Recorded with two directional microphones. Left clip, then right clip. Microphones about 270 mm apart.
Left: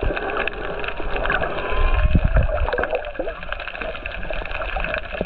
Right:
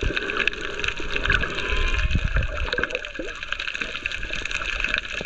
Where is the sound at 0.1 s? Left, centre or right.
Centre.